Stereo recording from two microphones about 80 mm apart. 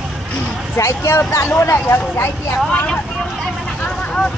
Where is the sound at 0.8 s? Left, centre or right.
Left.